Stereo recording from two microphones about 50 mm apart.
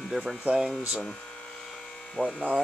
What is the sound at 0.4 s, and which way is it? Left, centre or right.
Speech, right.